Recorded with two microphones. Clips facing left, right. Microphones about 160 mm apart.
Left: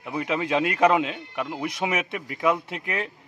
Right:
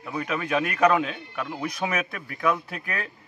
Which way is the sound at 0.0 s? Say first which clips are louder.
Left 2 dB; 20° left (ahead or behind).